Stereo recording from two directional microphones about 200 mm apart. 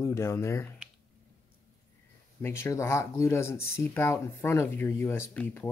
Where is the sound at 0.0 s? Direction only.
15° left (ahead or behind).